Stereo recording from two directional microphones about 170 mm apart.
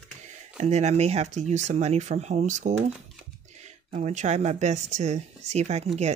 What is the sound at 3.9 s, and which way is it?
Speech, 45° right (ahead or behind).